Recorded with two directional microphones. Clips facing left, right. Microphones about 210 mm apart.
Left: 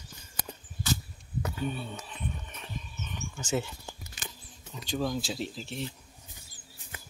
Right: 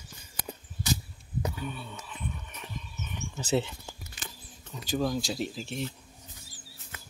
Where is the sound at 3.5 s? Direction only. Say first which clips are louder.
Right 3 dB; 25° right (ahead or behind).